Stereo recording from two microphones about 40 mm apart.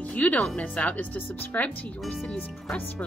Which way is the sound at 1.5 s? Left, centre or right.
Left.